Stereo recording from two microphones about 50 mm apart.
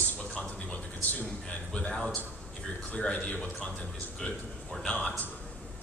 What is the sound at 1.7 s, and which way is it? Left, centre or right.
Speech, left.